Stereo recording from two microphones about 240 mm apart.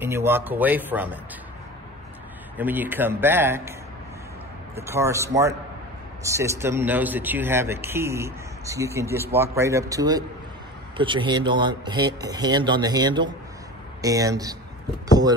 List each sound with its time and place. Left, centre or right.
0.0 s speech: centre
2.5 s speech: centre
4.7 s speech: centre